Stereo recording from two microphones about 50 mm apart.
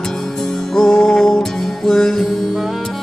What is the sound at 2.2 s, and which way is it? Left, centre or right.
Music, centre.